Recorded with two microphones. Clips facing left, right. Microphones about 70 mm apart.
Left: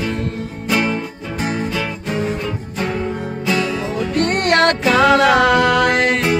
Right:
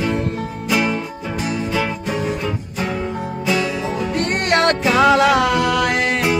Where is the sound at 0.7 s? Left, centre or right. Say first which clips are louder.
Left 1 dB; centre.